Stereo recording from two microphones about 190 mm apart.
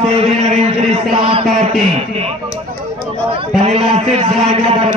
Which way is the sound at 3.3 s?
35° right (ahead or behind).